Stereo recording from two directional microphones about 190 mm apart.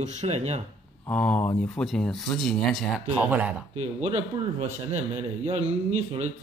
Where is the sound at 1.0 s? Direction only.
5° left (ahead or behind).